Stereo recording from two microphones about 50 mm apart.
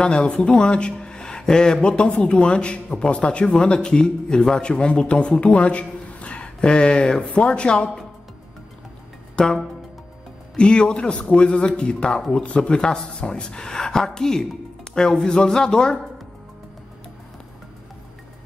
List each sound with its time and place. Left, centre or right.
0.0 s speech: left
9.3 s music: centre
10.5 s a man's voice: centre